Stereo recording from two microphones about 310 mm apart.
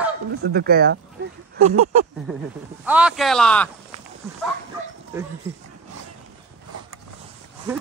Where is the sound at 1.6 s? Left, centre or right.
Right.